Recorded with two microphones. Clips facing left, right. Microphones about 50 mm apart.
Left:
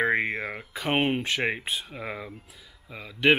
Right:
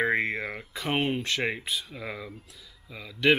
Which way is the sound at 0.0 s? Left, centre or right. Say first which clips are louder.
Left 1 dB; centre.